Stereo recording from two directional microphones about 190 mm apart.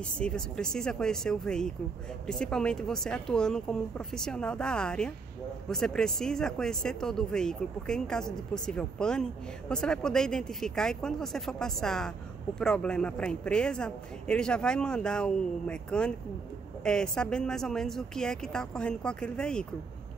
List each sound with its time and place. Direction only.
0.2 s speech: 5° left (ahead or behind)